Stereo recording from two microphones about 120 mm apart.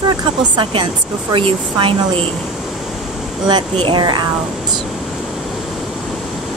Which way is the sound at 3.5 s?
40° right (ahead or behind).